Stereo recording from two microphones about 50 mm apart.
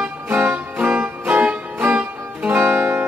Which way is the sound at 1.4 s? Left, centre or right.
Right.